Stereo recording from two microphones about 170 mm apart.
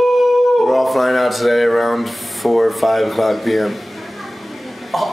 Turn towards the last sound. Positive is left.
turn(degrees=0)  # may be behind; listen again after turning